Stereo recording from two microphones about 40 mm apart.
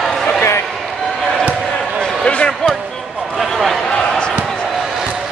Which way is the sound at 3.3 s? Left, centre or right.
Centre.